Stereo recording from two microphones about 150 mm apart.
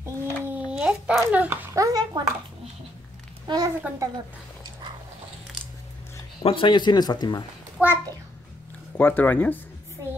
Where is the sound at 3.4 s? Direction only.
25° right (ahead or behind).